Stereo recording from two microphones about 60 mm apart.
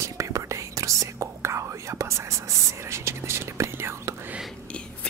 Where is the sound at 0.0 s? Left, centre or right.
Right.